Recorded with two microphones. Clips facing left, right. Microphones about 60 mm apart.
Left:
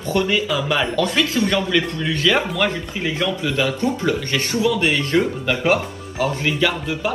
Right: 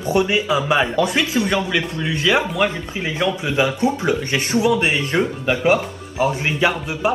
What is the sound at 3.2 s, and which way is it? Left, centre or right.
Speech, right.